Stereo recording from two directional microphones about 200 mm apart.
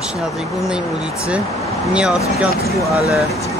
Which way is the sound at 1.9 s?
5° right (ahead or behind).